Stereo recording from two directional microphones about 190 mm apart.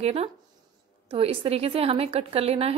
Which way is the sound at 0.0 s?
30° right (ahead or behind).